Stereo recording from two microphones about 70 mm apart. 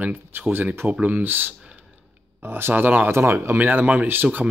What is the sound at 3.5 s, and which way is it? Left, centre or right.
Speech, right.